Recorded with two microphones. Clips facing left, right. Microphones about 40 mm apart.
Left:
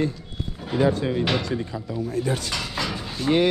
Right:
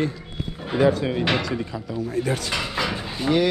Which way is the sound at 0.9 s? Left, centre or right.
Right.